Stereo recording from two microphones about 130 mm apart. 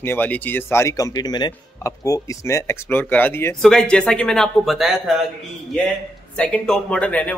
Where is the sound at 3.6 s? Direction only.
5° left (ahead or behind).